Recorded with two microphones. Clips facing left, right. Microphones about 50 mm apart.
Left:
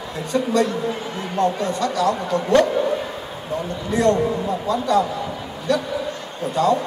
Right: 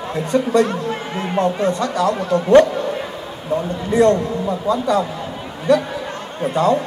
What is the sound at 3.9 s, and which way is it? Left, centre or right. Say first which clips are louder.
Speech: right 3 dB; right.